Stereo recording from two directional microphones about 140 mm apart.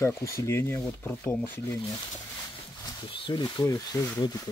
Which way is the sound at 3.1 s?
35° left (ahead or behind).